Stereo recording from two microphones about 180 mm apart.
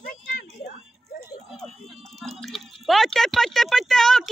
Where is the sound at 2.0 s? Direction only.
Centre (ahead or behind).